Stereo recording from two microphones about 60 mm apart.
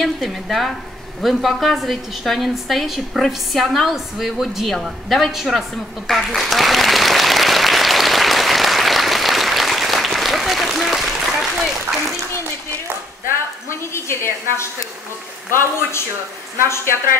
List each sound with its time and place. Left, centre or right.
0.0 s a woman's voice: centre
6.0 s applause: centre
13.7 s a sound: left
16.6 s a woman's voice: left